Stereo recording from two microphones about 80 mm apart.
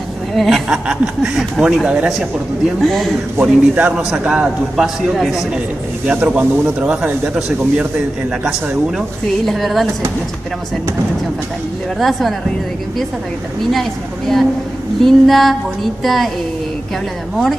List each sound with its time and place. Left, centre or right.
0.3 s speech: centre
0.7 s speech: centre
2.8 s a man's voice: centre
3.3 s a man's voice: right
4.3 s a man's voice: centre
6.0 s speech: centre
9.5 s a man's voice: centre
12.0 s a man's voice: centre
13.7 s a man's voice: centre